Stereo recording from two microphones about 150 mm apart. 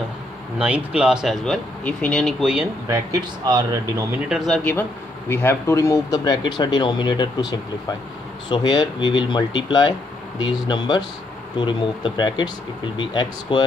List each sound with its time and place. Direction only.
0.6 s speech: 10° right (ahead or behind)
2.4 s speech: 5° right (ahead or behind)
2.9 s speech: 25° right (ahead or behind)
4.3 s speech: centre (ahead or behind)
5.3 s speech: 15° left (ahead or behind)